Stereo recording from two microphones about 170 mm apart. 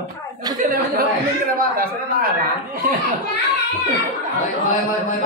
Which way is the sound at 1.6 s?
60° right (ahead or behind).